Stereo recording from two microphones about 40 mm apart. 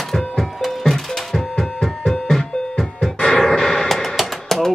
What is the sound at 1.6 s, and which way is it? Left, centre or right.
Music, centre.